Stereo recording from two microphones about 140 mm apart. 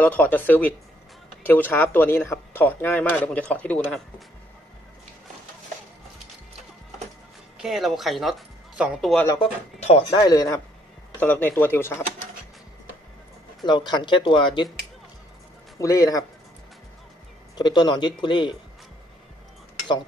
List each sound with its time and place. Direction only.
0.0 s speech: 10° left (ahead or behind)
7.5 s speech: 5° right (ahead or behind)
9.4 s speech: 45° left (ahead or behind)
10.0 s speech: 25° left (ahead or behind)
11.1 s speech: 10° left (ahead or behind)
13.7 s speech: 35° left (ahead or behind)
15.8 s speech: 25° left (ahead or behind)
17.6 s speech: 30° left (ahead or behind)